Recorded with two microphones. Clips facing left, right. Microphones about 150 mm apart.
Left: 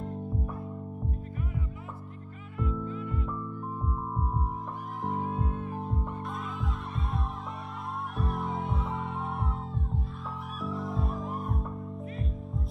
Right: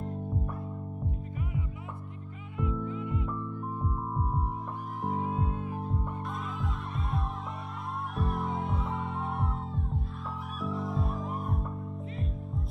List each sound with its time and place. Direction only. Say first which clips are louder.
2.5 s music: even; 20° right (ahead or behind)
5.1 s music: right 1 dB; 15° right (ahead or behind)
8.2 s music: right 1 dB; centre (ahead or behind)